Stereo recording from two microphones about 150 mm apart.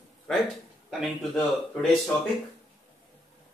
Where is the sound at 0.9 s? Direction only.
Centre (ahead or behind).